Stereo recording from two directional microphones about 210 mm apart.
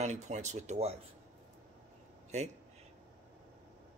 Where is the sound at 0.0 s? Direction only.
35° right (ahead or behind).